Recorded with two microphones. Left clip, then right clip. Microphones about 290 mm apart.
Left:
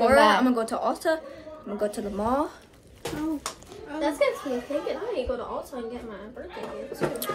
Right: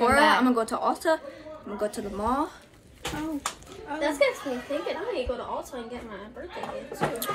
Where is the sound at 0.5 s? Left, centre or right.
Centre.